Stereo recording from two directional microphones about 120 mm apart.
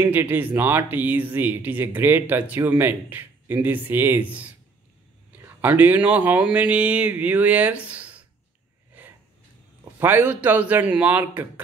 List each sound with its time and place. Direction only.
0.0 s speech: 15° right (ahead or behind)
9.0 s a sound: 15° right (ahead or behind)
9.9 s speech: 15° right (ahead or behind)